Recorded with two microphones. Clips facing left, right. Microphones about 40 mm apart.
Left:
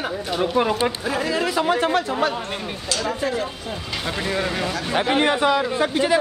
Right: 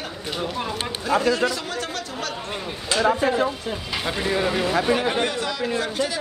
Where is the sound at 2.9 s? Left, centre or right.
Right.